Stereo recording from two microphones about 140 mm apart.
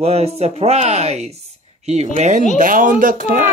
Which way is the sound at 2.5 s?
70° right (ahead or behind).